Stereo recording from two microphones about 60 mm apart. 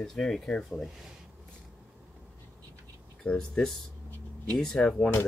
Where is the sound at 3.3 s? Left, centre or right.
Centre.